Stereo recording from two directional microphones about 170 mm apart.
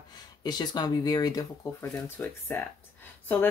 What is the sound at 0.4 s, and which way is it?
Speech, 25° left (ahead or behind).